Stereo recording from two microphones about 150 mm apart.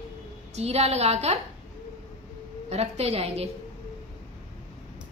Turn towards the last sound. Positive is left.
turn(degrees=-40)  # may be behind; listen again after turning